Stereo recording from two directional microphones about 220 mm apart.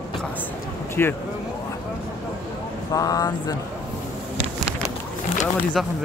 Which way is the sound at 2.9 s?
15° left (ahead or behind).